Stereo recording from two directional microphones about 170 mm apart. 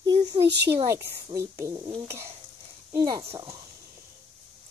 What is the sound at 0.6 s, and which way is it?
Speech, 15° right (ahead or behind).